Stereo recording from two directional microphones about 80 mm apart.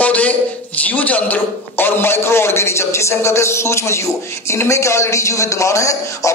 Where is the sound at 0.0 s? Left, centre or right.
Centre.